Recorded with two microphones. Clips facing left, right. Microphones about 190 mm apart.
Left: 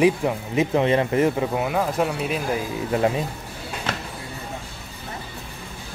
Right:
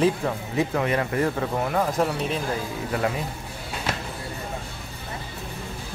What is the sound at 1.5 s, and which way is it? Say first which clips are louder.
Speech: left 1 dB; 5° left (ahead or behind).